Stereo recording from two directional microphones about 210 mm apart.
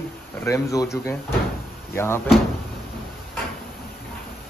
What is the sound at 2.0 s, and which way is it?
Speech, 10° left (ahead or behind).